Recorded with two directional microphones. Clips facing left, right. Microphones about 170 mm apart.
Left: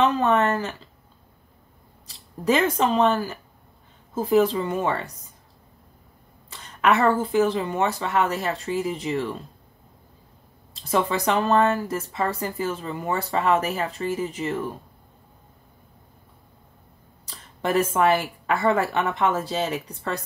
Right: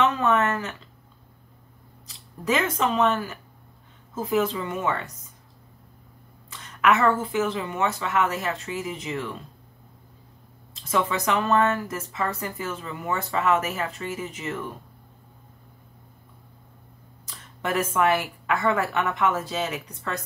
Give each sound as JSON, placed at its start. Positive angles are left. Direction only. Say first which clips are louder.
{"t": 0.0, "sound": "a sound", "louder": "left 2 dB", "side_deg": 30}
{"t": 2.0, "sound": "speech", "louder": "left 4 dB", "side_deg": 30}
{"t": 6.8, "sound": "speech", "louder": "left 1 dB", "side_deg": 30}
{"t": 10.7, "sound": "speech", "louder": "left 2 dB", "side_deg": 30}
{"t": 17.6, "sound": "speech", "louder": "left 3 dB", "side_deg": 30}